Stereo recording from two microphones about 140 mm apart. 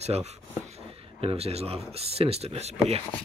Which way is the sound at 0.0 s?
50° right (ahead or behind).